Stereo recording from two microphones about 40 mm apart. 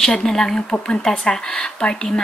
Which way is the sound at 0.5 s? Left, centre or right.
Left.